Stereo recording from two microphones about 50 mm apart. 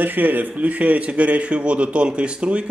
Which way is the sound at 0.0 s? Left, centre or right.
Right.